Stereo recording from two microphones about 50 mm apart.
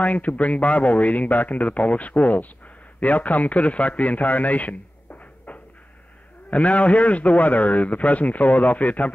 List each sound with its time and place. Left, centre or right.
0.0 s a man's voice: left